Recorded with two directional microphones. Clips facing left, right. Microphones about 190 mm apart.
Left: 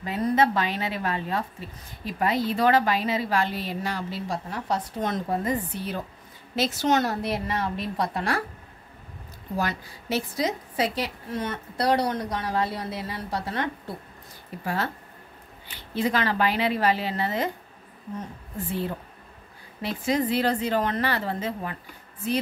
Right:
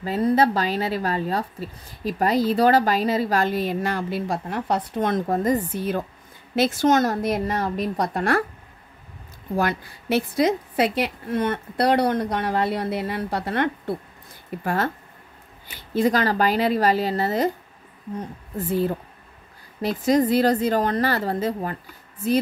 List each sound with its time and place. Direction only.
0.0 s a woman's voice: 35° right (ahead or behind); by 8.5 s 55° right (ahead or behind)
9.6 s a woman's voice: 60° right (ahead or behind)
15.9 s a woman's voice: 40° right (ahead or behind)
19.8 s a woman's voice: 40° right (ahead or behind)